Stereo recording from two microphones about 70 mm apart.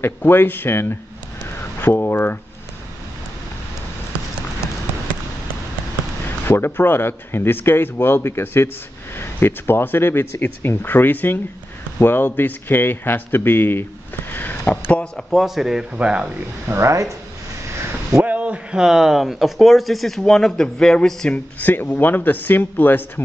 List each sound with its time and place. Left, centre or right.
0.0 s speech: left
6.4 s speech: left
14.9 s speech: centre
15.3 s a man's voice: centre
16.6 s speech: right
18.2 s a man's voice: right; by 21.4 s centre
21.5 s speech: left